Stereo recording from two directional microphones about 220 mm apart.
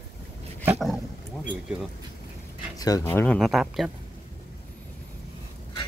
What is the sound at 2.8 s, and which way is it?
Speech, 15° left (ahead or behind).